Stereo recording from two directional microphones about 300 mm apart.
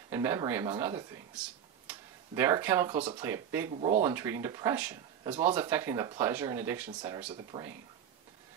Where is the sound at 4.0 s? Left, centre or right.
Centre.